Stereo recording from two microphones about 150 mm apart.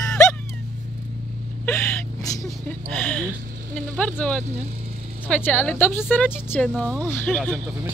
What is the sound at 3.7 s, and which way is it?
Speech, 10° left (ahead or behind).